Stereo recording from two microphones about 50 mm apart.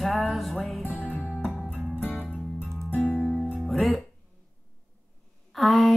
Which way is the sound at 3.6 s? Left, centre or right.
Centre.